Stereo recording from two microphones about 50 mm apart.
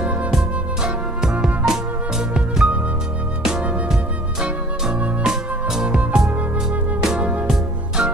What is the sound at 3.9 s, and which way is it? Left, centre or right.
Music, centre.